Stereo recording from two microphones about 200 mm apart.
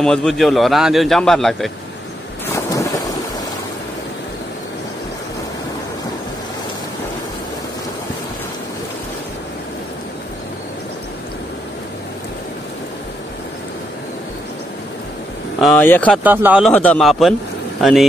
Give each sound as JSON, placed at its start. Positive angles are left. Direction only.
{"t": 0.0, "sound": "a man's voice", "side_deg": 5}
{"t": 2.5, "sound": "thunder", "side_deg": 15}
{"t": 15.6, "sound": "speech", "side_deg": 10}
{"t": 16.3, "sound": "speech", "side_deg": -10}
{"t": 16.6, "sound": "a man's voice", "side_deg": 5}